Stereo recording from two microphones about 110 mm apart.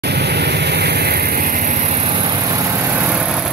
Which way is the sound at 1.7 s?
85° right.